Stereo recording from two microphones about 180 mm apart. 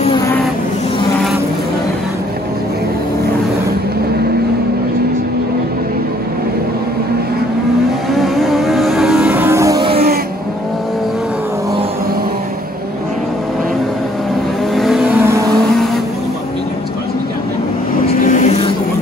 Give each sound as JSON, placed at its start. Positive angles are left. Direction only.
{"t": 8.1, "sound": "vehicle", "side_deg": 0}
{"t": 14.8, "sound": "vehicle", "side_deg": 0}
{"t": 18.2, "sound": "a sound", "side_deg": 45}